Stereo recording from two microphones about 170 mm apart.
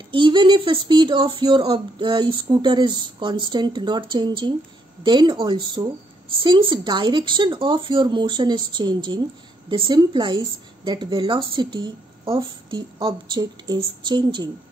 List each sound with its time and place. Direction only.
0.1 s a woman's voice: 30° right (ahead or behind)